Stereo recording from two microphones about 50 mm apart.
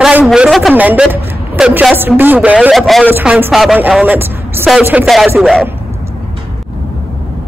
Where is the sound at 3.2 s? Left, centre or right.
Centre.